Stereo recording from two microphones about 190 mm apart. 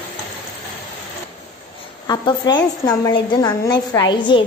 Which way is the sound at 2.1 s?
20° left (ahead or behind).